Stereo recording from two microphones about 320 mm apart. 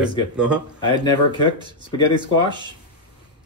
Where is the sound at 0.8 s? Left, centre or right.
Centre.